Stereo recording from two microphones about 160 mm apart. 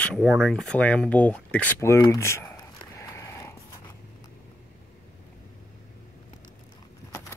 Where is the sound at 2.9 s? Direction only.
20° left (ahead or behind).